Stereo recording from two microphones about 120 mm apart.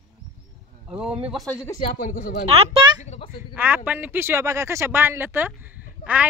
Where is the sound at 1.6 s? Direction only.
30° left (ahead or behind).